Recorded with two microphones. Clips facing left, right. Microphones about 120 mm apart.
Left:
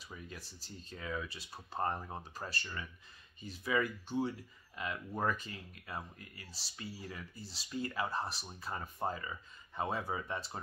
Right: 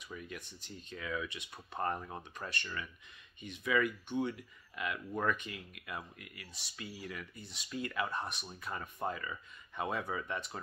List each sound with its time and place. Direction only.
0.0 s speech: 30° left (ahead or behind)